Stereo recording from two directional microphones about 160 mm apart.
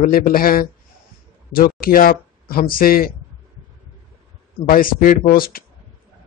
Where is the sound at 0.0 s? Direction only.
60° left (ahead or behind).